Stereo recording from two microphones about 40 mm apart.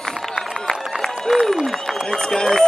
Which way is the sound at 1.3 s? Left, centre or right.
Centre.